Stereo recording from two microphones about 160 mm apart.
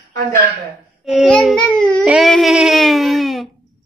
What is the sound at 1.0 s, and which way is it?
A woman's voice, centre (ahead or behind).